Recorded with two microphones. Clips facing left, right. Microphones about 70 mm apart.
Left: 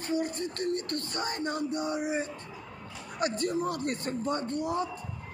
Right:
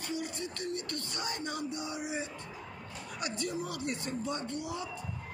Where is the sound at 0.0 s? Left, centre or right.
Left.